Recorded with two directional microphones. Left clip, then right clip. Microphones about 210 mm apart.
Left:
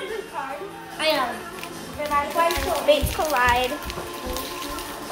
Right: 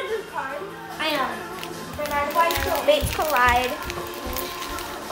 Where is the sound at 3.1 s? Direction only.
15° right (ahead or behind).